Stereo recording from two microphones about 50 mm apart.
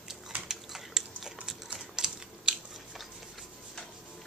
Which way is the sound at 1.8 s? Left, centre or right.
Centre.